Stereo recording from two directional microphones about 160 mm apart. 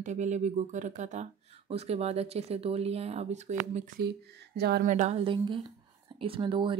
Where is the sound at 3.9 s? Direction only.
85° right.